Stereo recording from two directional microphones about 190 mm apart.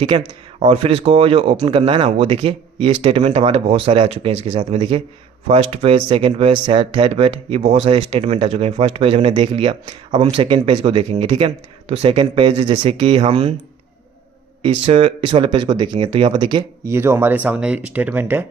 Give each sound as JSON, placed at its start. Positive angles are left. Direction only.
{"t": 0.1, "sound": "speech", "side_deg": -25}
{"t": 14.6, "sound": "speech", "side_deg": -30}